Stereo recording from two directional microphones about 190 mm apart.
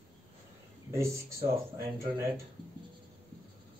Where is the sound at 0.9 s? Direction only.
15° right (ahead or behind).